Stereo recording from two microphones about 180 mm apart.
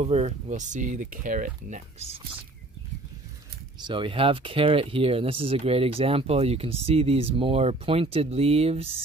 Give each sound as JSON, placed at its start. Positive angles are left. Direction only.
{"t": 0.0, "sound": "speech", "side_deg": -35}
{"t": 3.8, "sound": "speech", "side_deg": -30}